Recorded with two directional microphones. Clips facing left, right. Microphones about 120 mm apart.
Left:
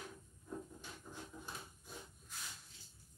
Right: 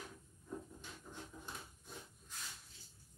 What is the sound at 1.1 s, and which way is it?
Dog, 5° left (ahead or behind).